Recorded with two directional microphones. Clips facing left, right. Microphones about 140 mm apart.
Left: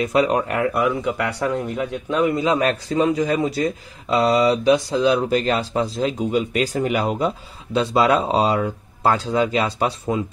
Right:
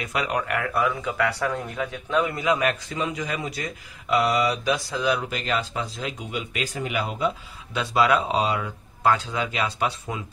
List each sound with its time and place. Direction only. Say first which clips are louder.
0.0 s a man's voice: left 8 dB; 30° left (ahead or behind)